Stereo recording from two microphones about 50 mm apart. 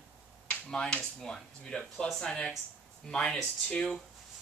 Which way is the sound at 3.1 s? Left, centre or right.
Centre.